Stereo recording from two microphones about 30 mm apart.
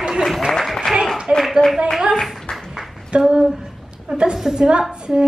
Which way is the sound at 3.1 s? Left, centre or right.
Right.